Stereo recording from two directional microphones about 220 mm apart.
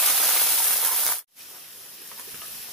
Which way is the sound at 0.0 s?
Centre (ahead or behind).